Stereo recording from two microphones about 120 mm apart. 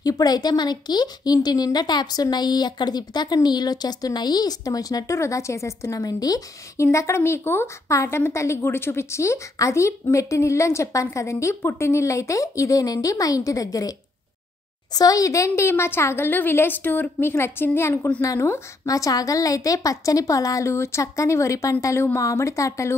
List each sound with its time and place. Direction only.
0.0 s speech: 30° left (ahead or behind)